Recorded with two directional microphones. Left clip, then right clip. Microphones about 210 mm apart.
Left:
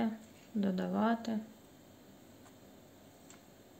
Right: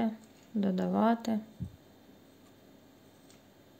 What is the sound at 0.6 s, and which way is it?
Speech, 20° right (ahead or behind).